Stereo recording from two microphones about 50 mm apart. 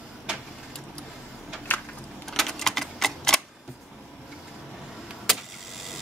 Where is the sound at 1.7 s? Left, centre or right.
Left.